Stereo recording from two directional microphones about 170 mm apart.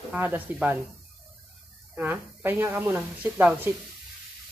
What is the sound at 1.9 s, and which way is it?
A woman's voice, 10° right (ahead or behind).